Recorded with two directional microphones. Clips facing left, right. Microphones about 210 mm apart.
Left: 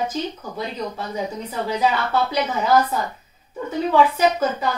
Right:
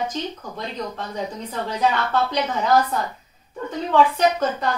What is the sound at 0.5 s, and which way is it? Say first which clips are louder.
A woman's voice: left 3 dB; 10° left (ahead or behind).